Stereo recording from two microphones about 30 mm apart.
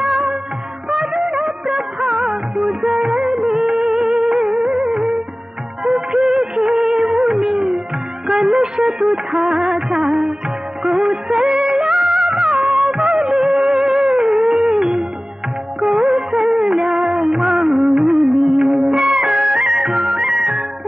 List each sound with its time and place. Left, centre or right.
0.0 s music: right
0.8 s music of bollywood: right
7.1 s music: right
8.3 s music of bollywood: right